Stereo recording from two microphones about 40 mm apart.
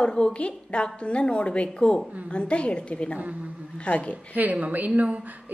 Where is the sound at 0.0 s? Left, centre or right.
Left.